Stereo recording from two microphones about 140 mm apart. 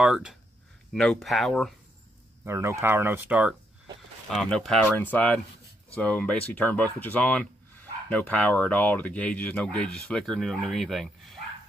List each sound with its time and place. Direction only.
0.0 s speech: 5° right (ahead or behind)
2.4 s speech: 20° right (ahead or behind)
4.3 s speech: 5° left (ahead or behind)